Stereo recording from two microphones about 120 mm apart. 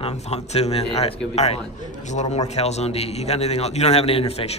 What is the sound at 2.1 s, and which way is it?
A man's voice, 70° left (ahead or behind).